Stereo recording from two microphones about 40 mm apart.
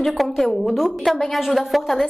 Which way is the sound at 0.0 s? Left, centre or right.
Centre.